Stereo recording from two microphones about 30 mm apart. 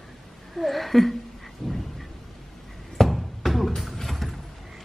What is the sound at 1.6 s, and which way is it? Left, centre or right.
Thunder, centre.